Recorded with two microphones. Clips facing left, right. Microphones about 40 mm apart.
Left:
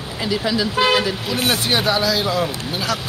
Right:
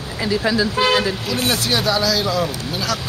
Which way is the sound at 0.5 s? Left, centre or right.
Left.